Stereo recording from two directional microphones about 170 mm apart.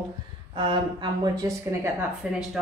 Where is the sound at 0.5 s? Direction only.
30° right (ahead or behind).